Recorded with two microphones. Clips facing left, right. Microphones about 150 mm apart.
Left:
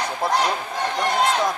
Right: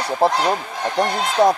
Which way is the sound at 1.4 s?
35° right (ahead or behind).